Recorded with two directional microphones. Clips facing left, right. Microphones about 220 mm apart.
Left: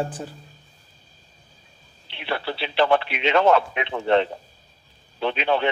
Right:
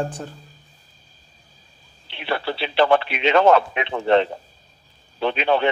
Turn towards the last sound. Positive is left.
turn(degrees=-45)  # may be behind; listen again after turning